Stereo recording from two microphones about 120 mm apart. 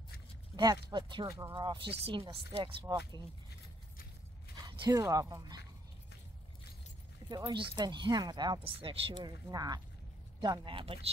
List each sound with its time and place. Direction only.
0.6 s speech: 35° right (ahead or behind)
2.9 s speech: 35° right (ahead or behind)
4.6 s speech: 30° right (ahead or behind)
7.2 s speech: 35° right (ahead or behind)
8.6 s speech: 50° right (ahead or behind)